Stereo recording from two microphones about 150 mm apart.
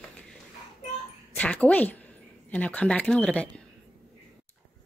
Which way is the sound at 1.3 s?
10° left (ahead or behind).